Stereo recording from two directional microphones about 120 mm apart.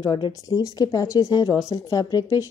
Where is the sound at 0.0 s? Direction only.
40° left (ahead or behind).